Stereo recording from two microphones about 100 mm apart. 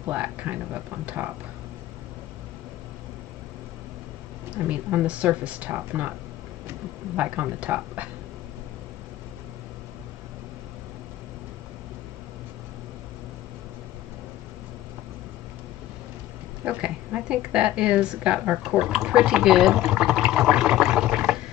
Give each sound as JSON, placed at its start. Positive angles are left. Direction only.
{"t": 0.0, "sound": "a woman's voice", "side_deg": -15}
{"t": 4.6, "sound": "a woman's voice", "side_deg": -10}
{"t": 7.2, "sound": "a woman's voice", "side_deg": -15}
{"t": 16.6, "sound": "a woman's voice", "side_deg": -10}